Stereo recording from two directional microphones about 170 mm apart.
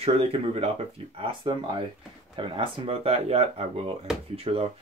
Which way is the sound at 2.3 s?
30° right (ahead or behind).